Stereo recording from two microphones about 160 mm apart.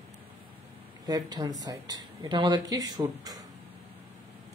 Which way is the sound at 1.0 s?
25° right (ahead or behind).